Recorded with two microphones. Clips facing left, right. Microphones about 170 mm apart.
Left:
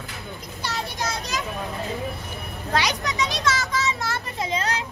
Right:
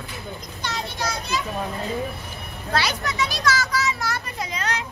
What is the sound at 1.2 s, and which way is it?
Children playing, 40° left (ahead or behind).